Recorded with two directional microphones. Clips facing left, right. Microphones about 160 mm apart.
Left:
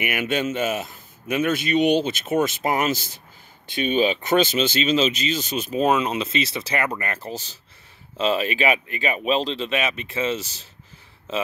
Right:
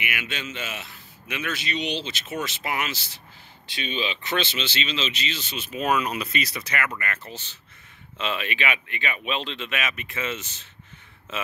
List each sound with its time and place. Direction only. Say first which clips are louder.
0.0 s speech: left 9 dB; 45° left (ahead or behind)